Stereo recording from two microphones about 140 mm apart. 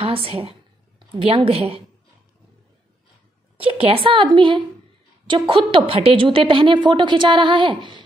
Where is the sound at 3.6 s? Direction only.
40° right (ahead or behind).